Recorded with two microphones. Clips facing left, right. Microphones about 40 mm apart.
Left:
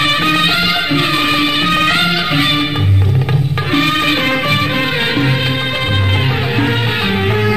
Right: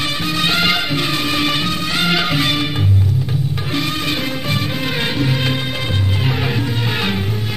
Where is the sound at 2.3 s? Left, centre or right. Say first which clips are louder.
Left 4 dB; left.